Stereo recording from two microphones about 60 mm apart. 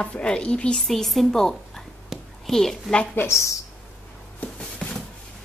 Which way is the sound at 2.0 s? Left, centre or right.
Centre.